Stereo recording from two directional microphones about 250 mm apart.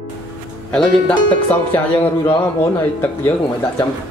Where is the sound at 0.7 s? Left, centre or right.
Centre.